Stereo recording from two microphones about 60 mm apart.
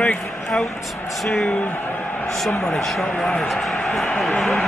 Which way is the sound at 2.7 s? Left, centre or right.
Centre.